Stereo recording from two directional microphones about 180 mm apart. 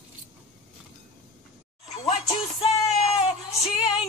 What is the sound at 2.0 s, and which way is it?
Music, 35° left (ahead or behind).